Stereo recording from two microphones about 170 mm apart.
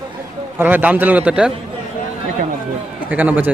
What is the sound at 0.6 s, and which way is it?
Speech, 10° right (ahead or behind).